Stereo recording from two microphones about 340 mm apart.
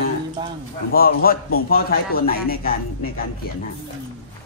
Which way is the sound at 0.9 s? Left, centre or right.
Left.